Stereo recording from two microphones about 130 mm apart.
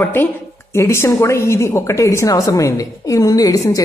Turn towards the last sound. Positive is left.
turn(degrees=25)  # may be behind; listen again after turning